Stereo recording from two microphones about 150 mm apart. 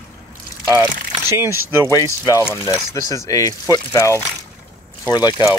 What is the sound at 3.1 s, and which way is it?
Speech, 20° left (ahead or behind).